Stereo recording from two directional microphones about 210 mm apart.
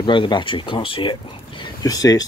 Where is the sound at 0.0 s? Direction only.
25° left (ahead or behind).